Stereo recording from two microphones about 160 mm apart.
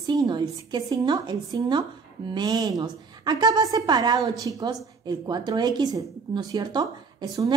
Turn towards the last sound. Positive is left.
turn(degrees=-20)  # may be behind; listen again after turning